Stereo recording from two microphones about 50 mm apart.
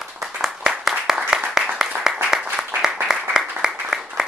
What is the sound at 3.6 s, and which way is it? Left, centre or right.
Applause, centre.